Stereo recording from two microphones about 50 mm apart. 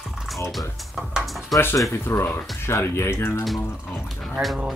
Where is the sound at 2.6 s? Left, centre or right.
Left.